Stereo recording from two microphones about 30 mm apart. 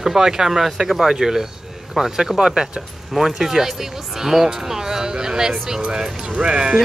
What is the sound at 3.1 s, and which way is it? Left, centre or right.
Speech, centre.